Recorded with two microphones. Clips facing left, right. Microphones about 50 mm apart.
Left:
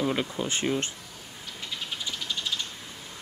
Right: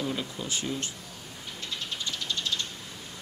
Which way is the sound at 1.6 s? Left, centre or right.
Centre.